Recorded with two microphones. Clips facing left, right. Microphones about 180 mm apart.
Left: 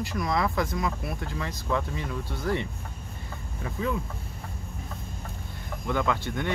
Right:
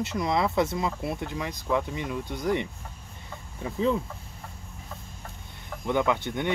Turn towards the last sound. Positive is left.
turn(degrees=-20)  # may be behind; listen again after turning